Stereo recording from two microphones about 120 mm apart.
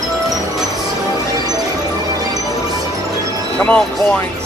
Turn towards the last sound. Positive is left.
turn(degrees=10)  # may be behind; listen again after turning